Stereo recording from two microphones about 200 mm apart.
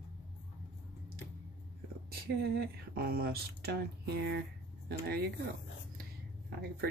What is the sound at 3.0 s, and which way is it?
Speech, 50° right (ahead or behind).